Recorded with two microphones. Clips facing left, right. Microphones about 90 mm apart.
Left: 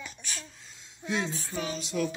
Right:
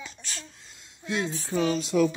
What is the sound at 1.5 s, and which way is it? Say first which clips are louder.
Speech: right 12 dB; 35° right (ahead or behind).